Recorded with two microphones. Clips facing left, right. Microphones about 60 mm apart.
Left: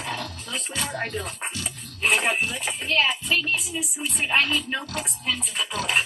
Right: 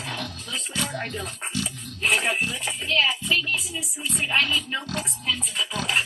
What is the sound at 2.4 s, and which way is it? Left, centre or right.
Music, centre.